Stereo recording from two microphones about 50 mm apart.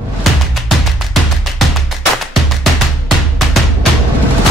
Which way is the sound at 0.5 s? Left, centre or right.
Centre.